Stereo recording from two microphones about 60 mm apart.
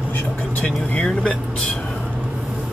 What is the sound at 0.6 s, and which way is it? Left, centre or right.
Speech, centre.